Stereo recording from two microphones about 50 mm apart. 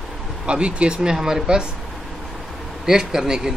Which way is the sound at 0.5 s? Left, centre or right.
Right.